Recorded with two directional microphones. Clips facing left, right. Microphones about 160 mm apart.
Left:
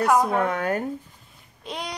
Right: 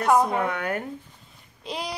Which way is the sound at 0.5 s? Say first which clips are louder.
Left 3 dB; 40° left (ahead or behind).